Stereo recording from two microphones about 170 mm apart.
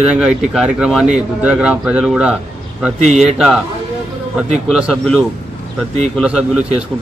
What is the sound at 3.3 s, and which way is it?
Speech, 5° right (ahead or behind).